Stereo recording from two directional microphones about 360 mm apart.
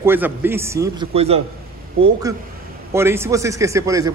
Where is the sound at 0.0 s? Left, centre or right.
Centre.